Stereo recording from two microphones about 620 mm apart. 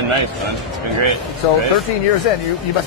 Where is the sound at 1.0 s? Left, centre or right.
Right.